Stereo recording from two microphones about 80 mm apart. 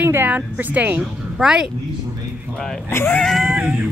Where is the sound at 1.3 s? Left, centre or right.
Centre.